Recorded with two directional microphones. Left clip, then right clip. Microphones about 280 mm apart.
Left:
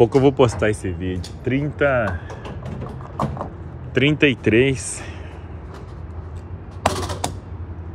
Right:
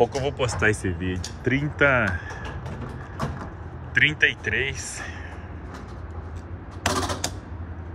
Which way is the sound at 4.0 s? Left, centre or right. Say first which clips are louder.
Left 2 dB; centre.